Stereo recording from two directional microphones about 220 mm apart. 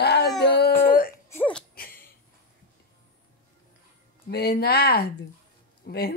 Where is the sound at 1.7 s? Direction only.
40° left (ahead or behind).